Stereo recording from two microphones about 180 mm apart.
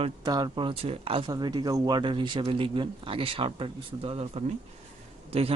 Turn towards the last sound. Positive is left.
turn(degrees=-30)  # may be behind; listen again after turning